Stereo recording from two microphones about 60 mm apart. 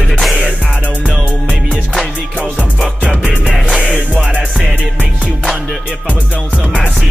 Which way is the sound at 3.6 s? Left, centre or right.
Centre.